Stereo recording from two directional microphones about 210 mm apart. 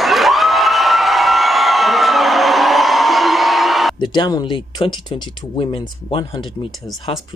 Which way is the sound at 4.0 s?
20° left (ahead or behind).